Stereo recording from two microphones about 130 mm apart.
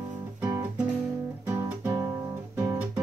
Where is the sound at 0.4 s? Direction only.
15° right (ahead or behind).